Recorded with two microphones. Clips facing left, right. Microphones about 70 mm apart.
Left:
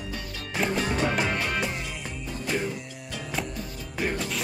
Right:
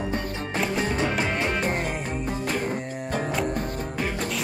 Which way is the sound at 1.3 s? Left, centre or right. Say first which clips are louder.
Right 3 dB; right.